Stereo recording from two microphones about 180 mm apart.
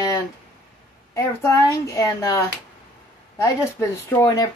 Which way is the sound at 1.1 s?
20° left (ahead or behind).